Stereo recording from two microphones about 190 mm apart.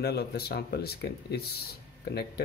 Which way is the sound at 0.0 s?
55° left (ahead or behind).